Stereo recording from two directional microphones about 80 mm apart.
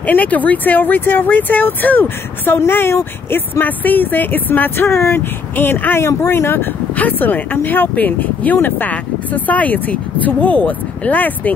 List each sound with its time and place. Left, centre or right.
0.0 s speech: centre